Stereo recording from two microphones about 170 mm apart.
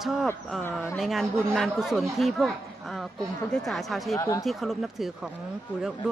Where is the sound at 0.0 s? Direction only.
Centre (ahead or behind).